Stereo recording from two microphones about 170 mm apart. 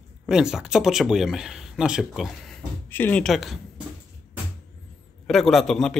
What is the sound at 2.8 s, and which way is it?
Speech, 10° left (ahead or behind).